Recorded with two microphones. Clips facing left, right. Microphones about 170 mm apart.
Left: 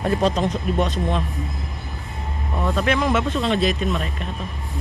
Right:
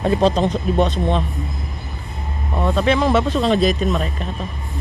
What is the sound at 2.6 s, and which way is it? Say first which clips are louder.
Speech: right 4 dB; 30° right (ahead or behind).